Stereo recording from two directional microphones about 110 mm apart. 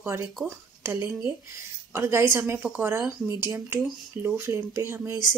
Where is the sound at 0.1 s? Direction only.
25° right (ahead or behind).